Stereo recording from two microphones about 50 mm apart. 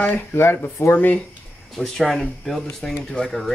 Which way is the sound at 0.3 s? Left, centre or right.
Left.